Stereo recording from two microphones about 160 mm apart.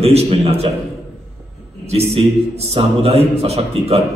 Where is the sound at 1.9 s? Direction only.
40° right (ahead or behind).